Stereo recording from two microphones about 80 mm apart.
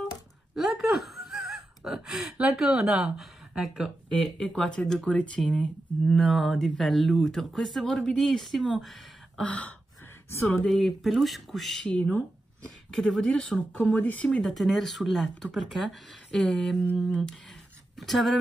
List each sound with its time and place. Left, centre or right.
0.6 s a sound: centre
2.3 s speech: centre
4.1 s speech: centre
9.4 s speech: centre
10.7 s speech: centre
17.9 s speech: centre